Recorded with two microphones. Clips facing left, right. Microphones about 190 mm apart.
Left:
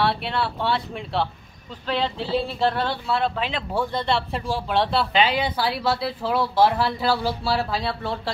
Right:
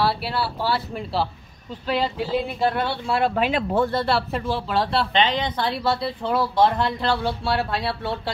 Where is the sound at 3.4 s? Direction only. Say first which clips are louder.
Right 6 dB; 45° right (ahead or behind).